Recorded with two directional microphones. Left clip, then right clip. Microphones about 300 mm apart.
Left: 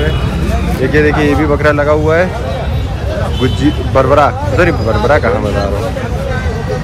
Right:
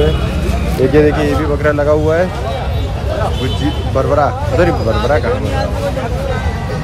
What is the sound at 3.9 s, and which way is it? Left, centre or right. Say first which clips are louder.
Speech: left 4 dB; centre.